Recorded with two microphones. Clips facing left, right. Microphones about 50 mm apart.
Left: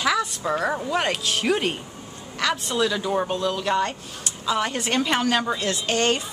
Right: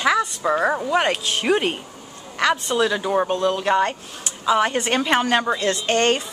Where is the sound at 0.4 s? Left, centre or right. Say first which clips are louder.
Right 4 dB; centre.